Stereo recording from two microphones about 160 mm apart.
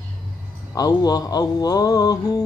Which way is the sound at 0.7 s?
25° left (ahead or behind).